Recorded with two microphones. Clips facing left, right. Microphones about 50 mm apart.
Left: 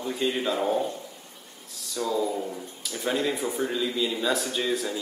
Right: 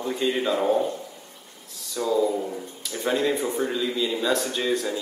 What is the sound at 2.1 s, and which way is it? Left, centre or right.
A man's voice, centre.